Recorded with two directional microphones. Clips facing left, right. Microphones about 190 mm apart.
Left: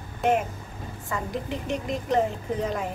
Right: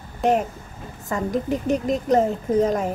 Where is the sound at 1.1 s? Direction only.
40° right (ahead or behind).